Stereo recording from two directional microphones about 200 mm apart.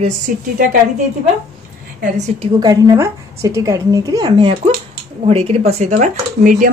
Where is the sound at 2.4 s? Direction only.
20° right (ahead or behind).